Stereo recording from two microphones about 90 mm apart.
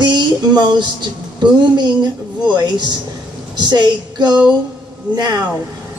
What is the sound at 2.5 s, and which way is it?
A woman's voice, 55° right (ahead or behind).